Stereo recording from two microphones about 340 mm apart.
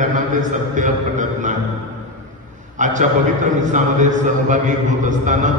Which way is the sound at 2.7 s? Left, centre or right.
Right.